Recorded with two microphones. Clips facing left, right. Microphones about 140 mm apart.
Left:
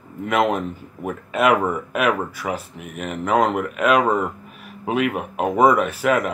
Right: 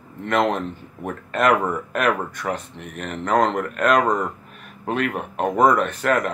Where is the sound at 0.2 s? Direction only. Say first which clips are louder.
Left 1 dB; 5° left (ahead or behind).